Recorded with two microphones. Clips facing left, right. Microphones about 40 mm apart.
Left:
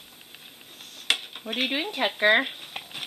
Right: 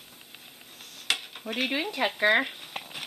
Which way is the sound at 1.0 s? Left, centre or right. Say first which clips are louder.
Left 3 dB; centre.